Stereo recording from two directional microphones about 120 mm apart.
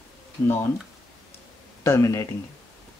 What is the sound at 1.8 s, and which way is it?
Speech, 25° left (ahead or behind).